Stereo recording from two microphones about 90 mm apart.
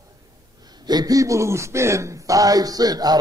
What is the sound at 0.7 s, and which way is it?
A man's voice, 50° right (ahead or behind).